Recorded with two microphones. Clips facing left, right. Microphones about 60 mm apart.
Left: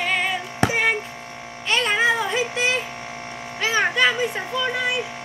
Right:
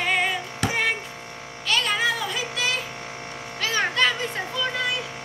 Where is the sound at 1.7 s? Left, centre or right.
Left.